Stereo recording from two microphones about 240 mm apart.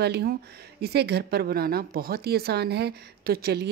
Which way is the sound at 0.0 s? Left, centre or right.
Right.